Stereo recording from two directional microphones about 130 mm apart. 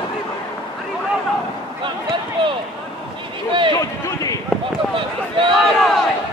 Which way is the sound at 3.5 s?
40° right (ahead or behind).